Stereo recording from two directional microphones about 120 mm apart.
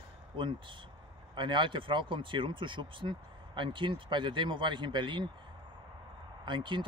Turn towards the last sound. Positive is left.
turn(degrees=-40)  # may be behind; listen again after turning